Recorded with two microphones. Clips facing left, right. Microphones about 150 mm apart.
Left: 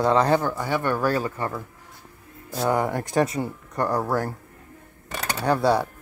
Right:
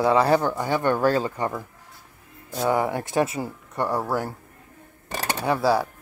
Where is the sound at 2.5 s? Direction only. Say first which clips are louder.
Even; 5° right (ahead or behind).